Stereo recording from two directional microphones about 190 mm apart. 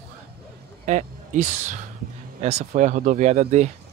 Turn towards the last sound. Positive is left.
turn(degrees=-35)  # may be behind; listen again after turning